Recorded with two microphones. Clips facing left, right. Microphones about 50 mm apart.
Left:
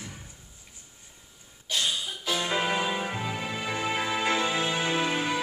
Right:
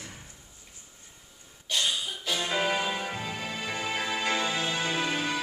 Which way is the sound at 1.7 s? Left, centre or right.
Centre.